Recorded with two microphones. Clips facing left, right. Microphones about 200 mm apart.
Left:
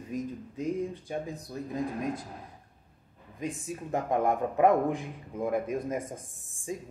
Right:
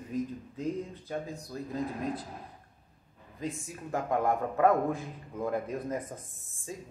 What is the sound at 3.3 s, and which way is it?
A man's voice, 15° left (ahead or behind).